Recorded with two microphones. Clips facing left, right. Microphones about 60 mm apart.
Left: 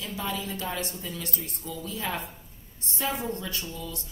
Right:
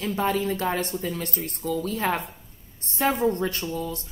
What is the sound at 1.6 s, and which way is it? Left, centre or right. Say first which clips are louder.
A woman's voice: right 9 dB; right.